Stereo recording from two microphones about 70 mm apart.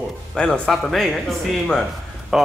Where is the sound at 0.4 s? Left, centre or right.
Centre.